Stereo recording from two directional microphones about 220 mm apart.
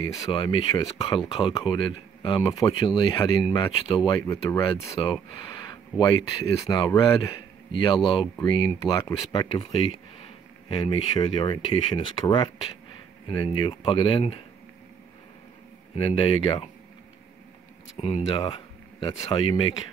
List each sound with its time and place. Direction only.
0.3 s speech: 20° left (ahead or behind)
16.0 s speech: 25° left (ahead or behind)
17.9 s speech: 25° left (ahead or behind)